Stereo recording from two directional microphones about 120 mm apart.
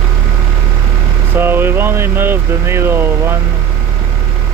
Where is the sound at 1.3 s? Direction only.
20° right (ahead or behind).